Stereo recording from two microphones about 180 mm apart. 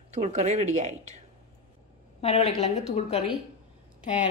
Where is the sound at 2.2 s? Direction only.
35° left (ahead or behind).